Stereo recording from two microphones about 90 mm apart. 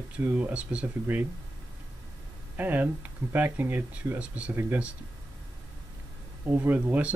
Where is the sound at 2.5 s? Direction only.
20° right (ahead or behind).